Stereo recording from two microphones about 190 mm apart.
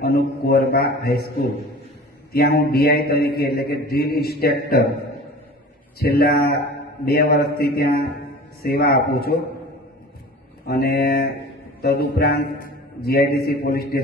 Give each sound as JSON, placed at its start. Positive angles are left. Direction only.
{"t": 0.0, "sound": "mantra", "side_deg": 55}
{"t": 5.9, "sound": "a man's voice", "side_deg": 55}
{"t": 10.7, "sound": "a man's voice", "side_deg": 55}